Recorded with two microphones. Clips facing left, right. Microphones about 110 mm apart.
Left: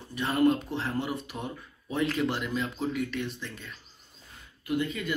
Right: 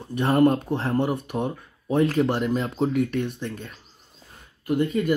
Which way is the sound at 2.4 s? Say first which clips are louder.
Right 7 dB; 55° right (ahead or behind).